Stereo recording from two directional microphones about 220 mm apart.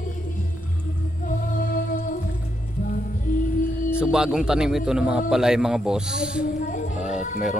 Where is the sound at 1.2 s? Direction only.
40° left (ahead or behind).